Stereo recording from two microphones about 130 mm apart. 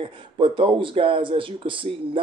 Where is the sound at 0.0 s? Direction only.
40° right (ahead or behind).